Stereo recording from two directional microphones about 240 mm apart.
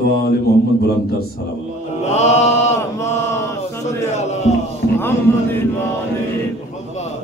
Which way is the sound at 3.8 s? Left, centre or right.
Left.